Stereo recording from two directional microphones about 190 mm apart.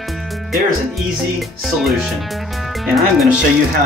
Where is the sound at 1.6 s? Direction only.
Centre (ahead or behind).